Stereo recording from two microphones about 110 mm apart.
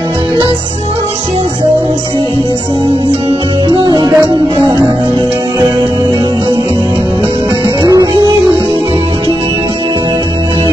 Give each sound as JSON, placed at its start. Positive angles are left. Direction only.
{"t": 3.6, "sound": "music", "side_deg": -40}
{"t": 7.8, "sound": "music", "side_deg": -35}